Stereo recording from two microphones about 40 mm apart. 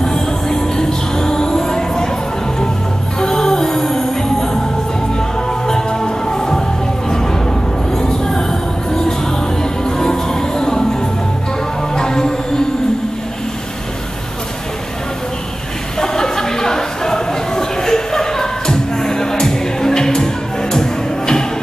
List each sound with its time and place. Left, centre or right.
0.0 s music: centre
3.2 s music: centre
5.7 s music: centre
8.0 s music: centre
9.6 s music: centre
11.9 s music: centre
16.0 s a sound: centre
20.7 s music: centre